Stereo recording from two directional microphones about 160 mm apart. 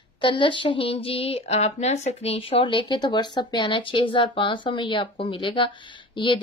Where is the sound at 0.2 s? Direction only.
30° left (ahead or behind).